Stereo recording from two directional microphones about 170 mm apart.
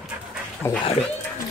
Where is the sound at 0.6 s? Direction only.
15° left (ahead or behind).